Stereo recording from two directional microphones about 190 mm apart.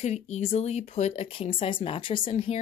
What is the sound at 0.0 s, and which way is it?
Speech, 35° left (ahead or behind).